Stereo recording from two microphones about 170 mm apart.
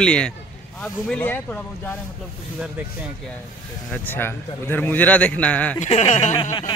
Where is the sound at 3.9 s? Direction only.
10° left (ahead or behind).